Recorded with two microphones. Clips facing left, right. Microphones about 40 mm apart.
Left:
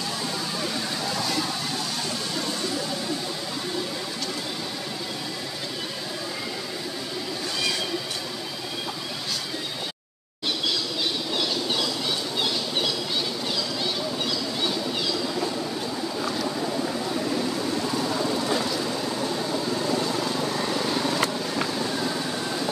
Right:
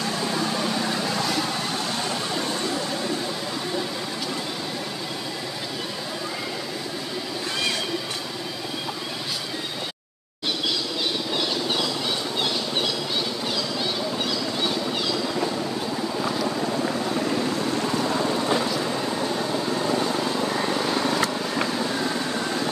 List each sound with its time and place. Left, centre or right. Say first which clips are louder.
19.8 s vehicle: right 2 dB; right